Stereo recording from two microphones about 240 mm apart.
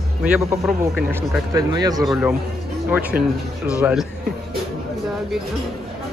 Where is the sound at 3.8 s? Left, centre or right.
Centre.